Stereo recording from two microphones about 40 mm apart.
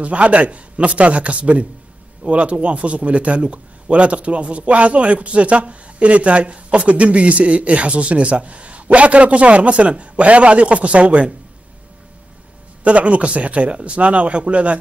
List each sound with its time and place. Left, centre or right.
0.0 s a man's voice: right
12.8 s a man's voice: right